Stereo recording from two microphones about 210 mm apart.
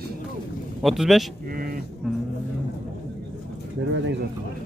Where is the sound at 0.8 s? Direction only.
Centre (ahead or behind).